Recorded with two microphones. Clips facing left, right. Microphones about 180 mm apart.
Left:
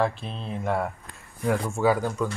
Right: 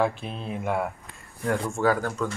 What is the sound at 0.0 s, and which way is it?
Speech, centre (ahead or behind).